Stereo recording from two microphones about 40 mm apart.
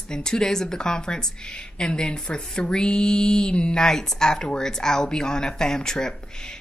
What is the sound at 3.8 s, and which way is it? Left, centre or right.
Speech, centre.